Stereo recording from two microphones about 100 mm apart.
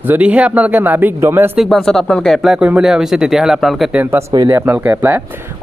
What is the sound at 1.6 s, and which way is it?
Speech, centre (ahead or behind).